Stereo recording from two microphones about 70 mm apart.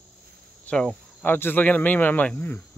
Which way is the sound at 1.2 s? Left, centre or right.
Left.